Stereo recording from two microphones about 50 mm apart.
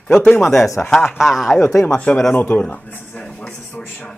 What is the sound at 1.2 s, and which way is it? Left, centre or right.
Speech, centre.